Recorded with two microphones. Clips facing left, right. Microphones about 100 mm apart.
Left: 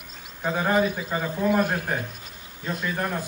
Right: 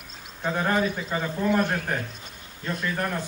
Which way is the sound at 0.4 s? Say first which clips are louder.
Left 2 dB; 5° left (ahead or behind).